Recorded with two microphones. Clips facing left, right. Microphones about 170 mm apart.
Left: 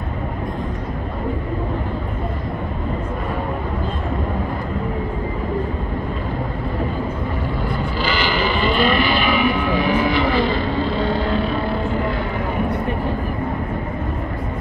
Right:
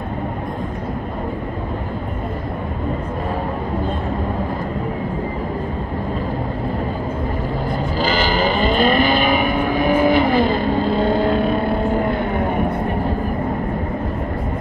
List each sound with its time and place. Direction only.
8.0 s vehicle: 45° right (ahead or behind)